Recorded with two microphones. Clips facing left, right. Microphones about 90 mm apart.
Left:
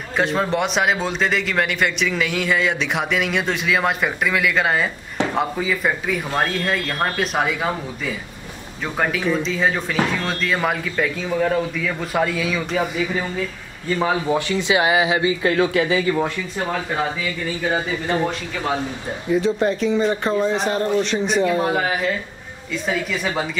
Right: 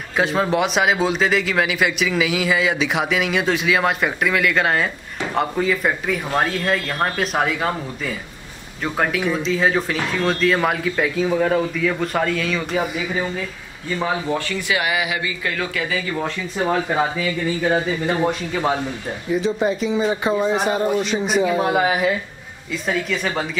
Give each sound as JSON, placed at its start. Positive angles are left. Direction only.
{"t": 0.2, "sound": "a man's voice", "side_deg": 0}
{"t": 13.9, "sound": "speech", "side_deg": 15}
{"t": 16.5, "sound": "speech", "side_deg": -15}
{"t": 19.3, "sound": "a man's voice", "side_deg": -5}
{"t": 22.7, "sound": "a man's voice", "side_deg": 0}